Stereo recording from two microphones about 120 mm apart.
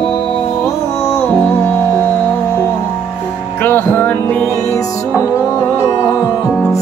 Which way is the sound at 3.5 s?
15° left (ahead or behind).